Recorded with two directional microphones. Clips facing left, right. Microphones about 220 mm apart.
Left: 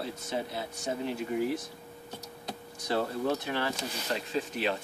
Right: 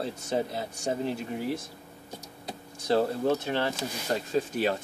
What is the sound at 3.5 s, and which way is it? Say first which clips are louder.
Speech: right 3 dB; 25° right (ahead or behind).